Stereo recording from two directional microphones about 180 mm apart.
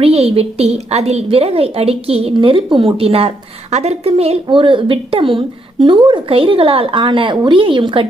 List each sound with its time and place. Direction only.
0.0 s a woman's voice: 35° right (ahead or behind)